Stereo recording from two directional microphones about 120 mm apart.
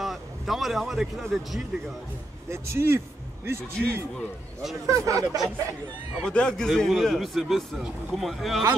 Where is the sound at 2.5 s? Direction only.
20° right (ahead or behind).